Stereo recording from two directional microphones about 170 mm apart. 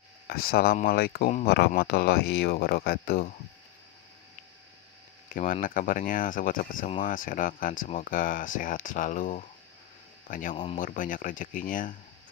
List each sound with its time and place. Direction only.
0.3 s speech: 60° left (ahead or behind)
5.3 s speech: 50° left (ahead or behind)
10.5 s speech: 35° left (ahead or behind)
10.8 s speech: 50° left (ahead or behind)